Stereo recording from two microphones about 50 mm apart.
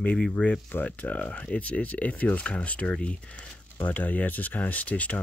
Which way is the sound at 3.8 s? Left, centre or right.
Left.